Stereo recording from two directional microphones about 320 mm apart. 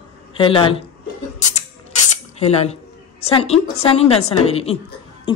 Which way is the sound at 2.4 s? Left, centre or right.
Centre.